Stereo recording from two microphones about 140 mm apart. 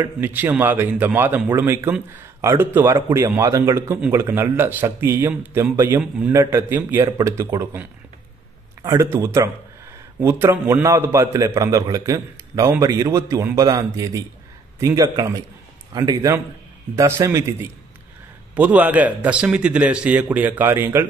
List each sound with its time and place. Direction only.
0.0 s a man's voice: 15° right (ahead or behind)